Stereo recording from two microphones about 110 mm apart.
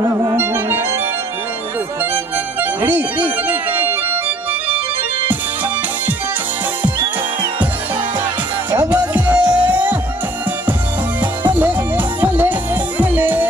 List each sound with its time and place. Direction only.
0.2 s music: 20° right (ahead or behind)
2.6 s organ: 15° right (ahead or behind)
9.1 s music: 15° right (ahead or behind)
11.4 s music: 15° right (ahead or behind)